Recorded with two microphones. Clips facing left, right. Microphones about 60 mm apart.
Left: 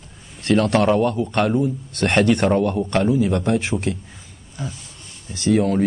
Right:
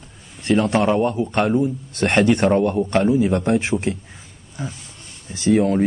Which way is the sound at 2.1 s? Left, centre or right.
Centre.